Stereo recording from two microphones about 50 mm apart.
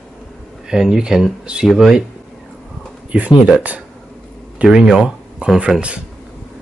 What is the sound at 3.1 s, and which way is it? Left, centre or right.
Speech, right.